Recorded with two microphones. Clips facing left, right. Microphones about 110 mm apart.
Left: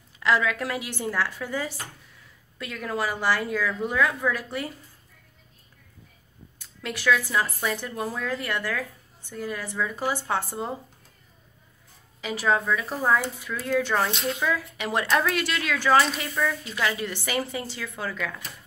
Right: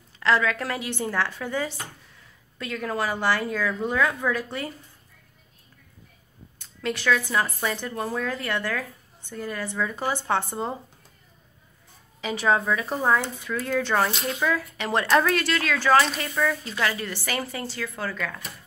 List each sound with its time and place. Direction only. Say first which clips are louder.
0.2 s a woman's voice: right 1 dB; 10° left (ahead or behind)
6.6 s a woman's voice: right 1 dB; 5° left (ahead or behind)
12.2 s a woman's voice: right 1 dB; centre (ahead or behind)
15.3 s speech: right 2 dB; 10° left (ahead or behind)